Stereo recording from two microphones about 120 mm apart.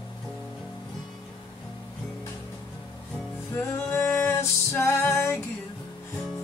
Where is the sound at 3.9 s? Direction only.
20° left (ahead or behind).